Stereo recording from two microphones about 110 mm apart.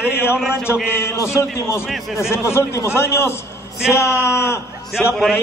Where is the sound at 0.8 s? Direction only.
25° left (ahead or behind).